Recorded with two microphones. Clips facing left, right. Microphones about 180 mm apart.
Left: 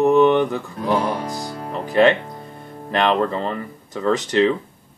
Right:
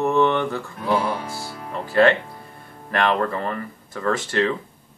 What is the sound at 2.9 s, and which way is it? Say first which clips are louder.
Speech: left 2 dB; 20° left (ahead or behind).